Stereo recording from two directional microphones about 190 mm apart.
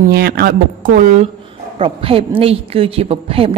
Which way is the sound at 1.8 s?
30° right (ahead or behind).